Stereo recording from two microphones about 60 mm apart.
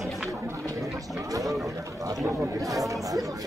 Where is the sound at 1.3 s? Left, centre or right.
Right.